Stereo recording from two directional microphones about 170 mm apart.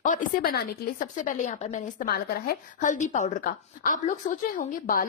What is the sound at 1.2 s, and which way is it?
Speech, 50° left (ahead or behind).